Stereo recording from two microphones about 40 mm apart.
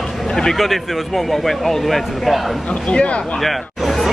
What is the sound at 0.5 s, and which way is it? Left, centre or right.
Speech, centre.